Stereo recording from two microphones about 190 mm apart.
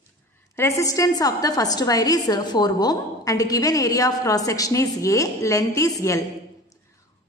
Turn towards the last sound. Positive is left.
turn(degrees=15)  # may be behind; listen again after turning